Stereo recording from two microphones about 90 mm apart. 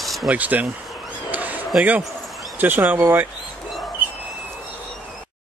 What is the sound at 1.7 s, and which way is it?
Speech, 20° right (ahead or behind).